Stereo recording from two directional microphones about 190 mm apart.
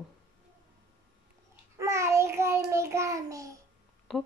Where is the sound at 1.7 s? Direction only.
15° right (ahead or behind).